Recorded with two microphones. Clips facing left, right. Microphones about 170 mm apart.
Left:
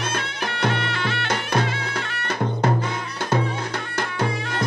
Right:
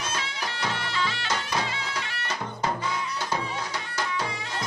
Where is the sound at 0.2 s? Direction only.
60° left (ahead or behind).